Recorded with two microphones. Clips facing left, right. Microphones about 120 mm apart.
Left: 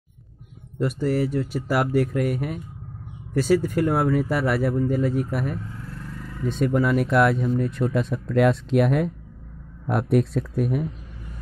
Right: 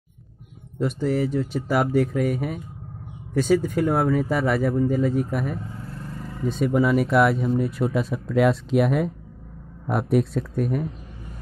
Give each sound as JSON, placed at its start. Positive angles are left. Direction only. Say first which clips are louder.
{"t": 0.7, "sound": "speech", "louder": "even", "side_deg": 5}
{"t": 5.9, "sound": "vehicle", "louder": "right 2 dB", "side_deg": -30}
{"t": 6.4, "sound": "speech", "louder": "right 1 dB", "side_deg": 0}